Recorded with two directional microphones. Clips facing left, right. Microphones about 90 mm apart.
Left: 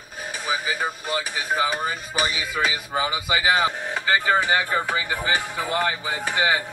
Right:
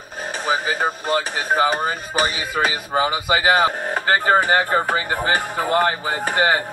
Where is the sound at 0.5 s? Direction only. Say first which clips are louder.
Right 5 dB; 55° right (ahead or behind).